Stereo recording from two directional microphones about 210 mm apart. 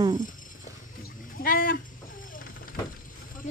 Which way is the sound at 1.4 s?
40° left (ahead or behind).